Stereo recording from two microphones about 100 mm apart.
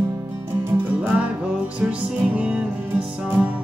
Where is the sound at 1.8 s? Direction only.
15° right (ahead or behind).